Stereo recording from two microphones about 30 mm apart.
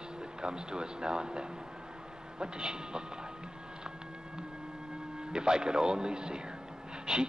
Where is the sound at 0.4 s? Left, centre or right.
Right.